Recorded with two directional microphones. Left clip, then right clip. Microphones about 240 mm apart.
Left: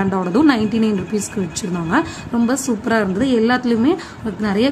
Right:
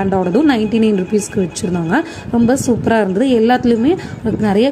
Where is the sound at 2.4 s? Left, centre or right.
Centre.